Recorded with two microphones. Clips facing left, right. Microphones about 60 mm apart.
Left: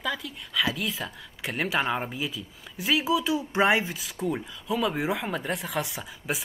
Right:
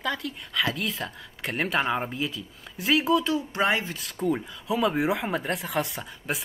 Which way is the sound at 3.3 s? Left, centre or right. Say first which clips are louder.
Left 2 dB; centre.